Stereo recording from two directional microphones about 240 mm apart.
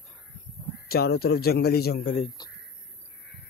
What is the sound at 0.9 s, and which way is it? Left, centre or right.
A man's voice, left.